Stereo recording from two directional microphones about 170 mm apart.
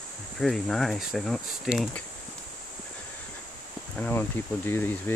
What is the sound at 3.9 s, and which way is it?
Speech, 10° left (ahead or behind).